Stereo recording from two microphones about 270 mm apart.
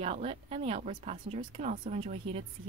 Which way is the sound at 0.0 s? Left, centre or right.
Right.